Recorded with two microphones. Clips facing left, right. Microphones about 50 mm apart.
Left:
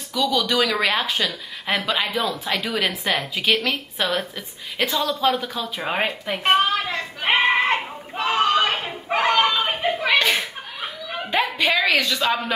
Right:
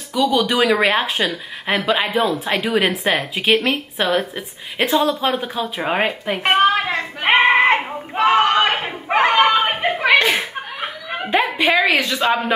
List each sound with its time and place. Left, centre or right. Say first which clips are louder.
0.1 s speech: right 4 dB; right
1.9 s speech: right 5 dB; centre
2.1 s speech: right 5 dB; right
5.9 s speech: right 4 dB; centre
6.7 s a woman's voice: right 4 dB; right
7.4 s a sound: right 5 dB; right
9.3 s snicker: right 3 dB; right
10.2 s chuckle: right 3 dB; right
11.5 s a woman's voice: right 4 dB; centre
11.8 s speech: right 3 dB; right